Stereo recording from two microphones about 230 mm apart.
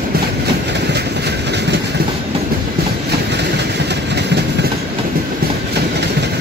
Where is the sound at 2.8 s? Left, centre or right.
Right.